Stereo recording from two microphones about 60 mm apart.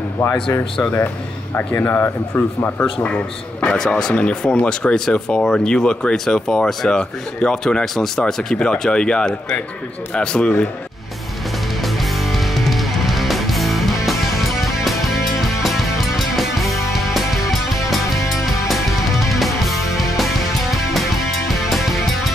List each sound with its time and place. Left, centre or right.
0.2 s a man's voice: left
0.9 s speech: left
3.6 s speech: centre
11.8 s music: centre